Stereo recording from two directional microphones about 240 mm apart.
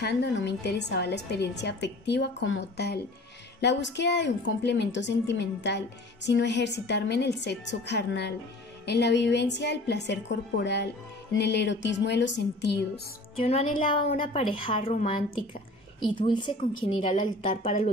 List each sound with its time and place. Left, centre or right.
0.0 s a woman's voice: left
13.4 s a woman's voice: left
17.5 s speech: left